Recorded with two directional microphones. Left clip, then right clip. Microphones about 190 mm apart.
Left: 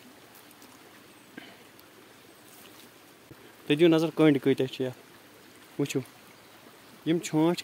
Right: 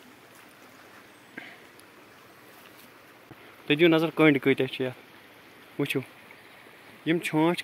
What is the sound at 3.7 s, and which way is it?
Speech, 10° left (ahead or behind).